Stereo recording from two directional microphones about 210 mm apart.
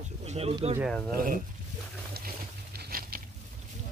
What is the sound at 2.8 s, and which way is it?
Biting, 45° right (ahead or behind).